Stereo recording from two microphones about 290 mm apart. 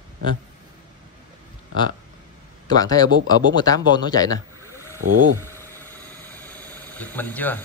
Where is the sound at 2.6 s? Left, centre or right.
Centre.